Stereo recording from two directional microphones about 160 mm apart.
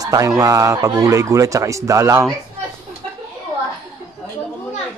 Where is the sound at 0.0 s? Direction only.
20° right (ahead or behind).